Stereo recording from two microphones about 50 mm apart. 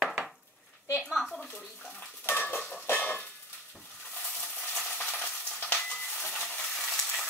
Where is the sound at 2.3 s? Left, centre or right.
Left.